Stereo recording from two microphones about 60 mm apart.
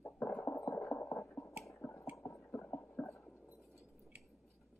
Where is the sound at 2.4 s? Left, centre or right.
Left.